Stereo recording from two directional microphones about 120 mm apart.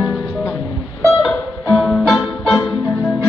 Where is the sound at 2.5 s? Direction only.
15° left (ahead or behind).